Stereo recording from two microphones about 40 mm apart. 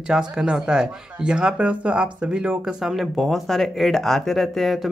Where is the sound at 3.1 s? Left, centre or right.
Centre.